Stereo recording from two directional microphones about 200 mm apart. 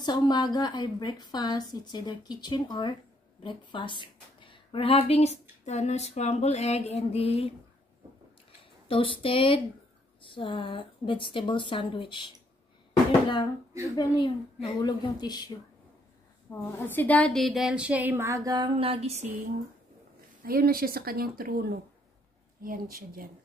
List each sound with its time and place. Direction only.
0.0 s a woman's voice: 20° left (ahead or behind)
8.8 s a woman's voice: 25° left (ahead or behind)
13.9 s a woman's voice: 25° left (ahead or behind)
16.4 s a woman's voice: 10° left (ahead or behind); by 19.3 s 35° right (ahead or behind)
20.4 s a woman's voice: 45° right (ahead or behind)